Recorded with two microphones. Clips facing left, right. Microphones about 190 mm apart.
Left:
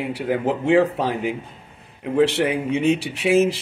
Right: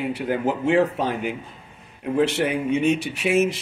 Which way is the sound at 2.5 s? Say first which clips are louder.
Left 1 dB; 30° left (ahead or behind).